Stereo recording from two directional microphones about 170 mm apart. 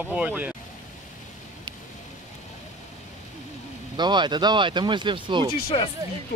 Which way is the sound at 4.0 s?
25° right (ahead or behind).